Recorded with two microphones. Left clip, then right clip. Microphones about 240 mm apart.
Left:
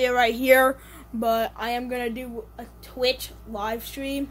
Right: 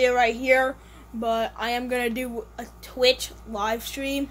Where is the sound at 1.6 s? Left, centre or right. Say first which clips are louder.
Right 2 dB; centre.